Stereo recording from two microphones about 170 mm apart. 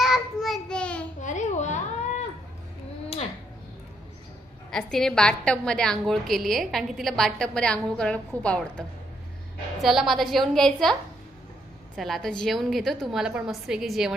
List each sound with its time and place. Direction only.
0.0 s child singing: centre (ahead or behind)
1.2 s a sound: 45° left (ahead or behind)
4.6 s a woman's voice: 5° left (ahead or behind)
12.0 s a woman's voice: centre (ahead or behind)